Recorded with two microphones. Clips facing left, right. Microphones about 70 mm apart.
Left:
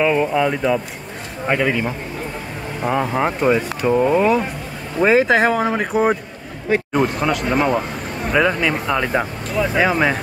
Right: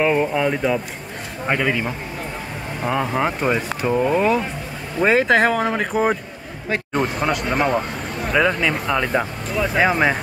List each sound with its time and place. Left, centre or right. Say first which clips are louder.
0.0 s speech: left 1 dB; centre
0.3 s a man's voice: left 2 dB; centre
9.8 s speech: even; centre